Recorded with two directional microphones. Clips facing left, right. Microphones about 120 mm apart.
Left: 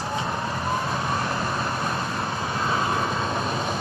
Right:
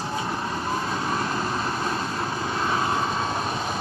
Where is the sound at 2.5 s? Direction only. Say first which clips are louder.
Even; 25° left (ahead or behind).